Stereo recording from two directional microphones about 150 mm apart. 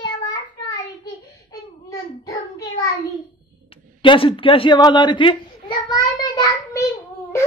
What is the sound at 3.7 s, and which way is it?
Speech, 35° left (ahead or behind).